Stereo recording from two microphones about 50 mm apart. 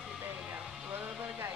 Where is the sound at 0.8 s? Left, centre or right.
Right.